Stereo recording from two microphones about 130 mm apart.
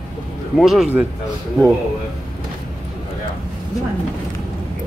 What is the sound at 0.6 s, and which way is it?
Speech, centre (ahead or behind).